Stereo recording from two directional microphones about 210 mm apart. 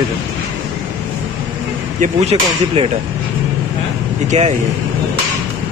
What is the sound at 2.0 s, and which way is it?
Speech, 30° right (ahead or behind).